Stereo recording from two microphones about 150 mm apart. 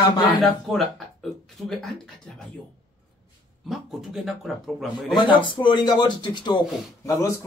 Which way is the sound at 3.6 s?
Centre (ahead or behind).